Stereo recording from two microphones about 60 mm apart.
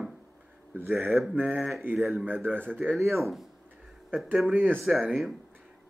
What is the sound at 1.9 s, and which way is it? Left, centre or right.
Speech, centre.